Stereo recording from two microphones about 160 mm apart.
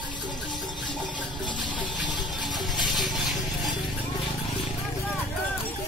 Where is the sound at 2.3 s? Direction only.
Centre (ahead or behind).